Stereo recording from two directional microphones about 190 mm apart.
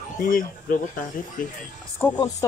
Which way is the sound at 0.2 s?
45° left (ahead or behind).